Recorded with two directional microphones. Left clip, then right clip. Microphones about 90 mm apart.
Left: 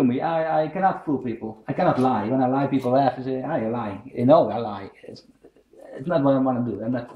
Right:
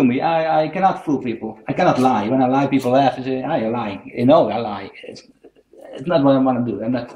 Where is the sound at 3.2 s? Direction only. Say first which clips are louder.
Right 5 dB; 30° left (ahead or behind).